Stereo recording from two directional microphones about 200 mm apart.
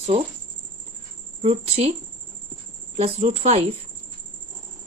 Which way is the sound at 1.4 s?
30° right (ahead or behind).